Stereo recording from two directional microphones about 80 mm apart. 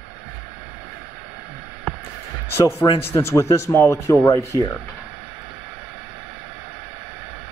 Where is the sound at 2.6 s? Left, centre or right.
Left.